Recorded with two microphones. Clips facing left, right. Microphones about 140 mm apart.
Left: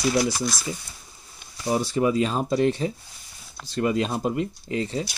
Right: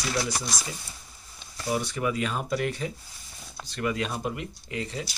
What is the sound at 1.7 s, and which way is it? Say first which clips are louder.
Speech: left 6 dB; 30° left (ahead or behind).